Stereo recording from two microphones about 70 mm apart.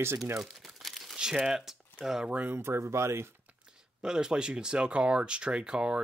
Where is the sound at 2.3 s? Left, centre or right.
Right.